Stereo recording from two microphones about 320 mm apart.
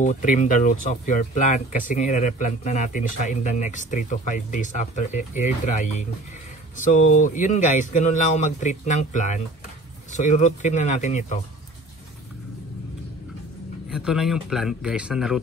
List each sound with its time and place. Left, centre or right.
0.0 s speech: left
13.8 s a man's voice: centre